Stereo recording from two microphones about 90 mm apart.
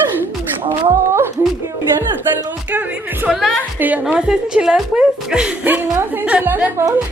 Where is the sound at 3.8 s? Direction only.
20° right (ahead or behind).